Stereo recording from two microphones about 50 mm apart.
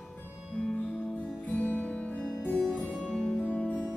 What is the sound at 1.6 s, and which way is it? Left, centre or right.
Music, left.